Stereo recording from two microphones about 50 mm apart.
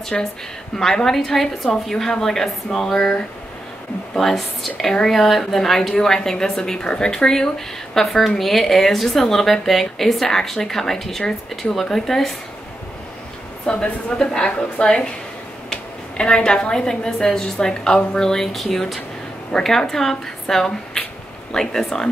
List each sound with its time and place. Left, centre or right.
0.1 s speech: centre
4.1 s a woman's voice: centre
13.7 s a woman's voice: left